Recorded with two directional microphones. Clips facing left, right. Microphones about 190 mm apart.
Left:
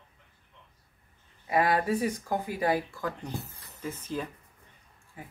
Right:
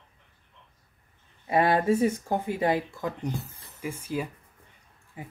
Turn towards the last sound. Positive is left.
turn(degrees=-20)  # may be behind; listen again after turning